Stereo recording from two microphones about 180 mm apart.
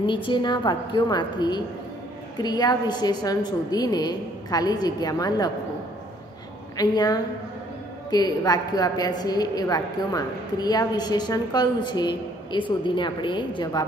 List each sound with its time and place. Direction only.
0.0 s a woman's voice: 25° left (ahead or behind)
6.8 s a woman's voice: 20° left (ahead or behind)